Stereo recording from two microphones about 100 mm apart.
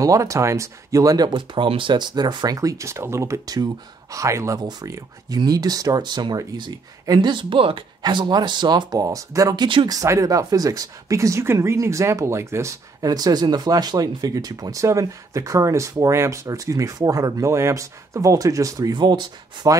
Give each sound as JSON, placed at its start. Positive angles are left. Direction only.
{"t": 0.0, "sound": "speech", "side_deg": -35}
{"t": 8.0, "sound": "speech", "side_deg": -50}
{"t": 9.0, "sound": "speech", "side_deg": -35}